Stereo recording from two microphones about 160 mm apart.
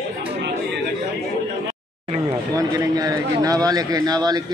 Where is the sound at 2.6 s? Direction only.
20° right (ahead or behind).